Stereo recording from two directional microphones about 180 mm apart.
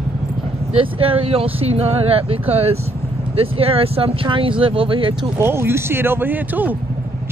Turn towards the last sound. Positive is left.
turn(degrees=-10)  # may be behind; listen again after turning